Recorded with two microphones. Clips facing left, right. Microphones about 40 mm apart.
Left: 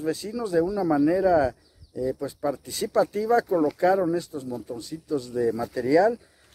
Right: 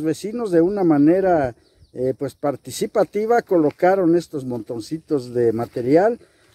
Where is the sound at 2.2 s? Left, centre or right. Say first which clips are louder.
Right 5 dB; right.